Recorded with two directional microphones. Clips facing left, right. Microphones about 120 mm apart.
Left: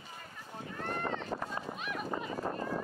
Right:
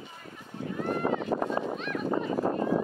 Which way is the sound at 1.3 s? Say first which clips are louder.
Right 9 dB; 40° right (ahead or behind).